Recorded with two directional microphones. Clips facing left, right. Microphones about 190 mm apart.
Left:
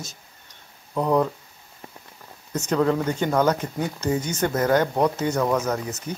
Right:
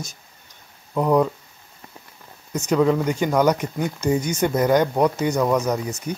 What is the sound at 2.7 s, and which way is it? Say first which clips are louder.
Speech: right 3 dB; 5° right (ahead or behind).